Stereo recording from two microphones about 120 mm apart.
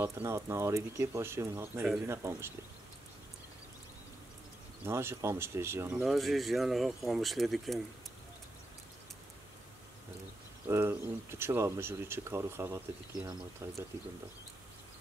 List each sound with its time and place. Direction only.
0.0 s speech: 20° right (ahead or behind)
4.8 s speech: 20° right (ahead or behind)
6.0 s speech: centre (ahead or behind)
10.7 s speech: 20° right (ahead or behind)